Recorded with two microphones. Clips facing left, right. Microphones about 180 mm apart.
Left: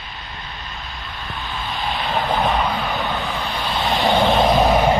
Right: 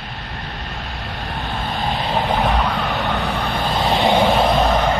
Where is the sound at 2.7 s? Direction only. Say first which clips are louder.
Right 2 dB; 75° right (ahead or behind); by 3.8 s 55° right (ahead or behind).